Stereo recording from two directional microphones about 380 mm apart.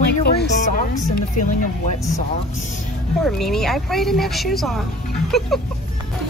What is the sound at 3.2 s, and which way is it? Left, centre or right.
Speech, centre.